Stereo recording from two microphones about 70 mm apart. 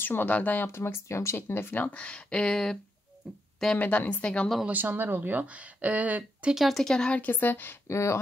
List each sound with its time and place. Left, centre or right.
0.0 s speech: left
0.7 s speech: left; by 4.5 s centre
4.6 s speech: right
6.5 s speech: centre
7.2 s speech: left
7.9 s speech: left